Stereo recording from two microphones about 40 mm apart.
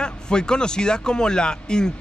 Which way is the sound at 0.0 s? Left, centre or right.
Left.